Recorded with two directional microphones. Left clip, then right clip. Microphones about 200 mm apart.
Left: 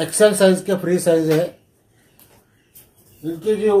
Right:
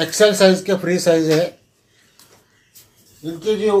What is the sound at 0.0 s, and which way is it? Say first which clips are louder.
Speech: right 1 dB; 15° left (ahead or behind).